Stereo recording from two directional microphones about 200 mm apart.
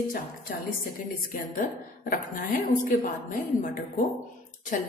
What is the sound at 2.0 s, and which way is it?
Speech, 45° left (ahead or behind).